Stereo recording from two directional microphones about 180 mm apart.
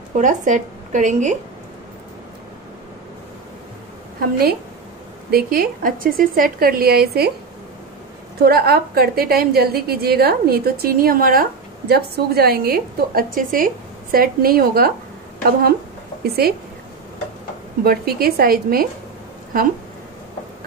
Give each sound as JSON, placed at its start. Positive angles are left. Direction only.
{"t": 0.2, "sound": "speech", "side_deg": -45}
{"t": 4.2, "sound": "a woman's voice", "side_deg": -60}
{"t": 8.4, "sound": "a woman's voice", "side_deg": -60}
{"t": 16.4, "sound": "a woman's voice", "side_deg": -60}
{"t": 17.8, "sound": "a woman's voice", "side_deg": -55}